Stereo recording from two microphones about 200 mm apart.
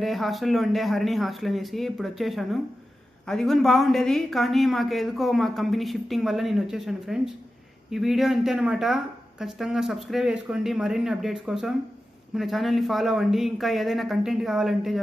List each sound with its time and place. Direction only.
0.0 s speech: centre (ahead or behind)